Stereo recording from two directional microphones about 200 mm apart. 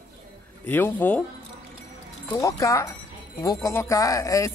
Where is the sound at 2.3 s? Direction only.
15° left (ahead or behind).